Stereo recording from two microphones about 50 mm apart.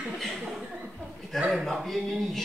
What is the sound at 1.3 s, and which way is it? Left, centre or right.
Speech, centre.